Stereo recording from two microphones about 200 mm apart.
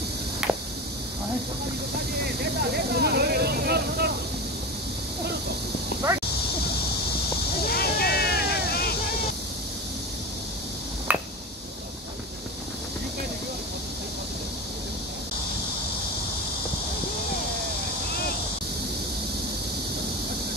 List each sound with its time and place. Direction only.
0.5 s a sound: 5° right (ahead or behind)
2.9 s vehicle: 50° right (ahead or behind)
7.7 s vehicle: 50° left (ahead or behind)
11.1 s finger snapping: 10° right (ahead or behind)